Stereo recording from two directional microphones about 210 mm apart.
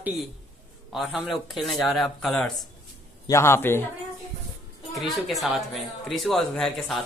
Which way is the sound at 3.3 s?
15° left (ahead or behind).